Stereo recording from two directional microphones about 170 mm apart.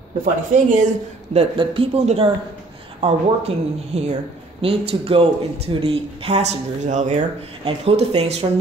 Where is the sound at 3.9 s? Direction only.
40° right (ahead or behind).